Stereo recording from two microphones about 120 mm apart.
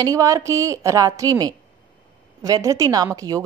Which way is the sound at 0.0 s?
30° right (ahead or behind).